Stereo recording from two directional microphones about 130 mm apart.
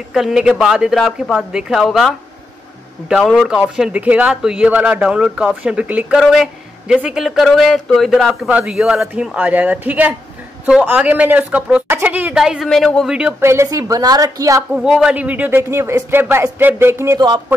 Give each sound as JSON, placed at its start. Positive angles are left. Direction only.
{"t": 0.1, "sound": "a man's voice", "side_deg": 0}
{"t": 13.4, "sound": "a woman's voice", "side_deg": -20}
{"t": 14.8, "sound": "a woman's voice", "side_deg": -5}